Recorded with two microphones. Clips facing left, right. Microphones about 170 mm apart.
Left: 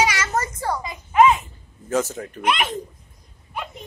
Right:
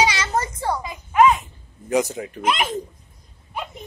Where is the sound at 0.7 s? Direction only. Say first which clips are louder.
Even; 5° right (ahead or behind).